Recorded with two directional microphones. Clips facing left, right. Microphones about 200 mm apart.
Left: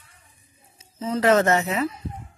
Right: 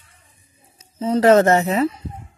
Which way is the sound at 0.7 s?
35° right (ahead or behind).